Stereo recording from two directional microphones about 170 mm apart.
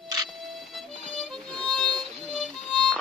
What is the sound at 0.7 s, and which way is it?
Music, centre (ahead or behind).